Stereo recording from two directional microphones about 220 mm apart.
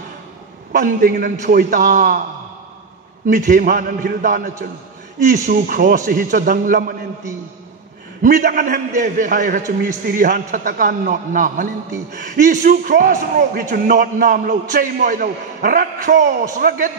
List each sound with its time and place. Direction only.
0.7 s a man's voice: 40° right (ahead or behind)
3.3 s a man's voice: 35° right (ahead or behind)
8.2 s a man's voice: 35° right (ahead or behind)